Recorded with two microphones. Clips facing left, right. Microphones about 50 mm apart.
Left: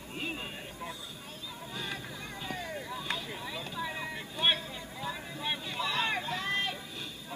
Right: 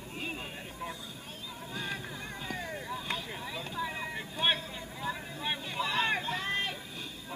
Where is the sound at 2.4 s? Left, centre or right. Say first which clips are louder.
Even; right.